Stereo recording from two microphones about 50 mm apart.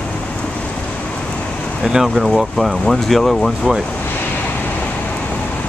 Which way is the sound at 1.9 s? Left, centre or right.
Centre.